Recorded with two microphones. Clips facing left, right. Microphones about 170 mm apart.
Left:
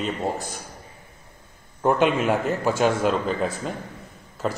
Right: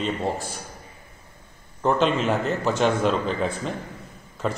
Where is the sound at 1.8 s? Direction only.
10° left (ahead or behind).